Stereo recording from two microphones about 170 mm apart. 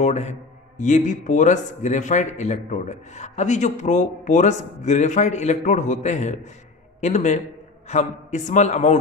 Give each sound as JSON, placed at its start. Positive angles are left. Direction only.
{"t": 0.0, "sound": "a man's voice", "side_deg": 40}